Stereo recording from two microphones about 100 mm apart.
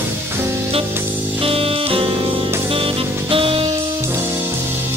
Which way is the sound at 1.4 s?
70° right (ahead or behind).